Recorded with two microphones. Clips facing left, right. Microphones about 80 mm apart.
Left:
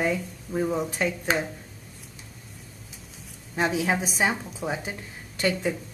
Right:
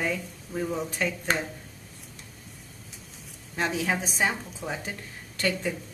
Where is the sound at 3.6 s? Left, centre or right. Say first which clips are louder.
Left 3 dB; centre.